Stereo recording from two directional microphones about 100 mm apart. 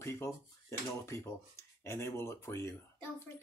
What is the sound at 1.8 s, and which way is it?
Speech, 25° left (ahead or behind).